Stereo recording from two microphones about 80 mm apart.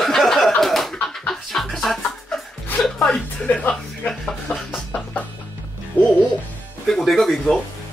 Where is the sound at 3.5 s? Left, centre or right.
Centre.